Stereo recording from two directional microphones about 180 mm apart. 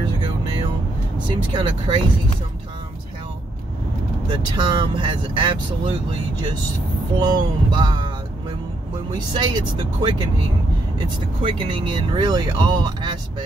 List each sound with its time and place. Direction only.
1.2 s speech: 25° right (ahead or behind)
4.3 s speech: 25° right (ahead or behind)
7.2 s speech: 25° right (ahead or behind)
9.1 s speech: 25° right (ahead or behind)